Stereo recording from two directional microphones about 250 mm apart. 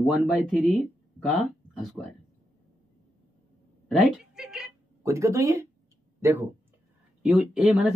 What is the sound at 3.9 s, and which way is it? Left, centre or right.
Cat, centre.